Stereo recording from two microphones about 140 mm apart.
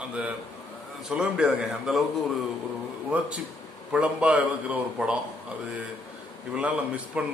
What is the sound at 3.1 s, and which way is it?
Speech, 10° right (ahead or behind).